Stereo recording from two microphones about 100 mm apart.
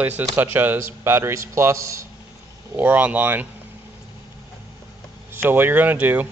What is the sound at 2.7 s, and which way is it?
Speech, 20° right (ahead or behind).